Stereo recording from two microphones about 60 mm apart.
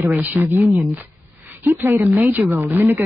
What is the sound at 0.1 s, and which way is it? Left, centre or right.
Speech, right.